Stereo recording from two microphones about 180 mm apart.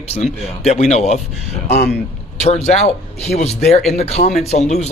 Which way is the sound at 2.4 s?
40° left (ahead or behind).